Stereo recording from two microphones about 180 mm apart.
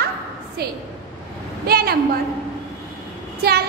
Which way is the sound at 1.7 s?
60° right (ahead or behind).